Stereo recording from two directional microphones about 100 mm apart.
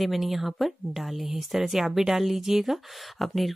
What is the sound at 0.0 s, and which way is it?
Speech, centre (ahead or behind).